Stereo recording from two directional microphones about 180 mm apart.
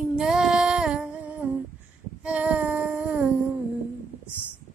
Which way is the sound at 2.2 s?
5° right (ahead or behind).